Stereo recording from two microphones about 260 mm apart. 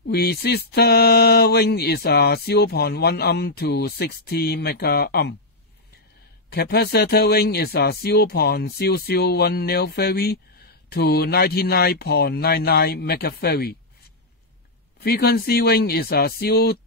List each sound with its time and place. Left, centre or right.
0.0 s speech: left
6.5 s speech: left
15.0 s speech: left